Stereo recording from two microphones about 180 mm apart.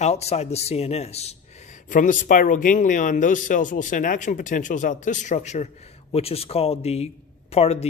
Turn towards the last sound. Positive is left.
turn(degrees=35)  # may be behind; listen again after turning